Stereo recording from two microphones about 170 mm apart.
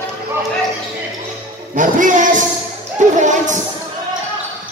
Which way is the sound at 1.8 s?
50° right (ahead or behind).